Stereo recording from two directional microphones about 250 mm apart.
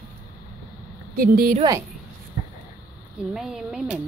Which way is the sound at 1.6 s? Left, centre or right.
Centre.